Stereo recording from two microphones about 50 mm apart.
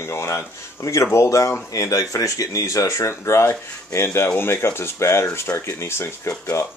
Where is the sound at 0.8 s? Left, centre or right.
Left.